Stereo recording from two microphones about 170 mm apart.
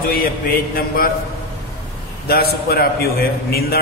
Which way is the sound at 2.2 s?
65° left (ahead or behind).